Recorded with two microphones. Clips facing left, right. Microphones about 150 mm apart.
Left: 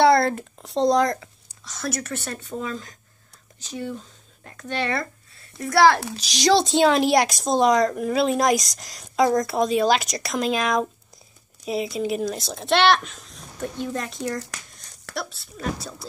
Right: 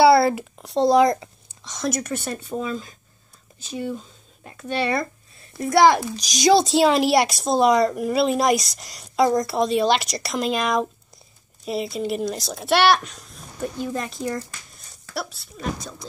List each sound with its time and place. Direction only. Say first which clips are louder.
0.0 s a woman's voice: right 2 dB; 5° right (ahead or behind)